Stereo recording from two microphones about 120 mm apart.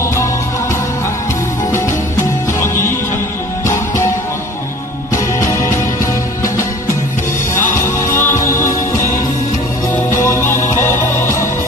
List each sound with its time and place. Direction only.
0.0 s music: 25° left (ahead or behind)
1.7 s music: 25° left (ahead or behind)
5.1 s music: 25° left (ahead or behind)
7.7 s music: 20° left (ahead or behind)
10.2 s music: 20° left (ahead or behind)